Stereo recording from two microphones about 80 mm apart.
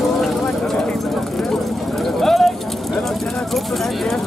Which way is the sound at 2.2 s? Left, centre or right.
Centre.